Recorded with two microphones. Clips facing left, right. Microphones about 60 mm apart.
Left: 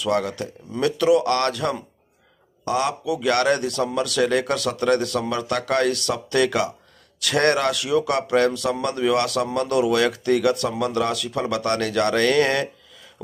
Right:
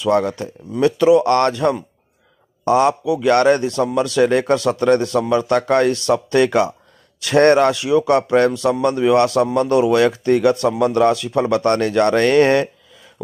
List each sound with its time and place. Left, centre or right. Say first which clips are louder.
0.0 s speech: right 6 dB; right